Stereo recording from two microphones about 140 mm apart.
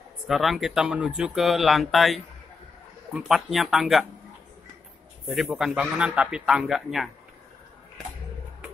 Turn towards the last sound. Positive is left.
turn(degrees=0)  # may be behind; listen again after turning